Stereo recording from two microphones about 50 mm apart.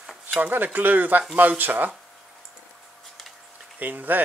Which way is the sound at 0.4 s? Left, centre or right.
Right.